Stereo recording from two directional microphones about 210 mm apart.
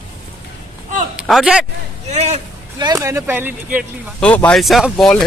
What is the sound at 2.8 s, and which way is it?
Speech, 15° right (ahead or behind).